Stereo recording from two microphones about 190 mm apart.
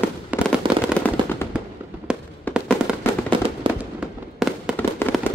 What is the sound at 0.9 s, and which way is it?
Machine gun, 10° left (ahead or behind).